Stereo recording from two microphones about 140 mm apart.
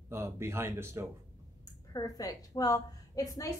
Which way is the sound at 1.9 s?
25° left (ahead or behind).